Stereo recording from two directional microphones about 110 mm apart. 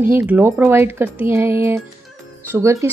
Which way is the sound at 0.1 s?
20° right (ahead or behind).